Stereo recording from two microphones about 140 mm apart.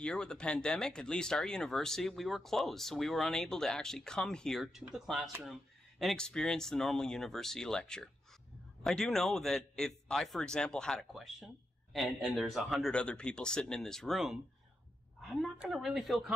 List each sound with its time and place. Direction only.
0.0 s speech: 5° left (ahead or behind)